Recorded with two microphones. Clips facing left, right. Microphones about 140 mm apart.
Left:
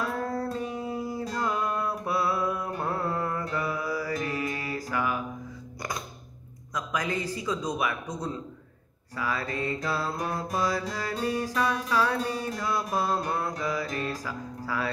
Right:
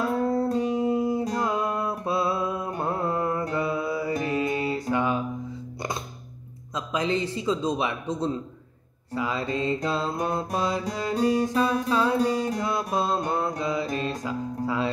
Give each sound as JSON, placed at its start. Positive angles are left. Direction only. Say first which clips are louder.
{"t": 0.0, "sound": "music", "louder": "right 6 dB", "side_deg": -25}
{"t": 6.7, "sound": "mantra", "louder": "right 4 dB", "side_deg": -25}